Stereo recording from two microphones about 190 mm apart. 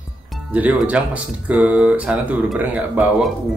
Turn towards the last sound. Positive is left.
turn(degrees=-10)  # may be behind; listen again after turning